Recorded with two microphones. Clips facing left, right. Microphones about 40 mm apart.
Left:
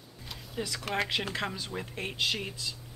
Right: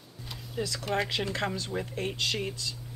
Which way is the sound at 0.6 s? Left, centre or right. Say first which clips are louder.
Right 2 dB; centre.